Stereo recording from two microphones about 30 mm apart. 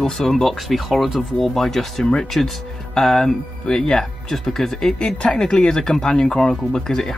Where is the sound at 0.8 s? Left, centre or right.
Centre.